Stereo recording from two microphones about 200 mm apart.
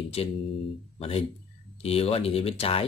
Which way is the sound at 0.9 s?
30° left (ahead or behind).